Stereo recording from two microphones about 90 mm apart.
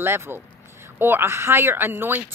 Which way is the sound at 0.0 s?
25° right (ahead or behind).